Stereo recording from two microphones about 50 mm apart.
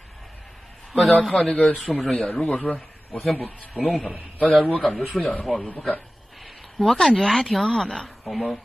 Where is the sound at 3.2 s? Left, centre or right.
Centre.